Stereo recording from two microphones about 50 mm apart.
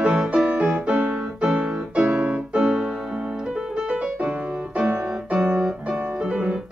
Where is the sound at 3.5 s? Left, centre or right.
Centre.